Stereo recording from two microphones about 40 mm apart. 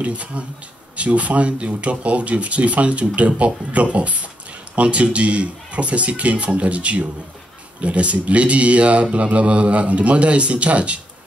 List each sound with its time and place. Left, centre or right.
0.0 s speech: right